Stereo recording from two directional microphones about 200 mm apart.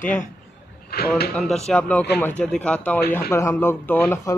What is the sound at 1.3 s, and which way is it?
Speech, centre (ahead or behind).